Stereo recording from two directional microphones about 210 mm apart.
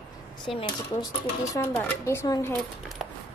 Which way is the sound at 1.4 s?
15° left (ahead or behind).